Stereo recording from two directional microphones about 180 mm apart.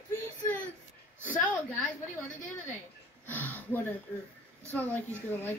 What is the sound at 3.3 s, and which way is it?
A woman's voice, 10° left (ahead or behind).